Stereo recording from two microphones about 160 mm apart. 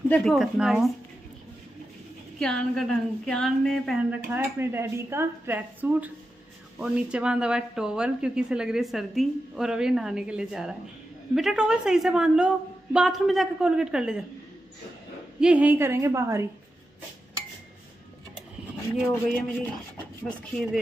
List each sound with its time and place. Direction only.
0.1 s speech: centre (ahead or behind)
2.3 s speech: 5° left (ahead or behind)
4.1 s speech: 10° right (ahead or behind)
15.4 s speech: 10° right (ahead or behind)
20.2 s speech: centre (ahead or behind)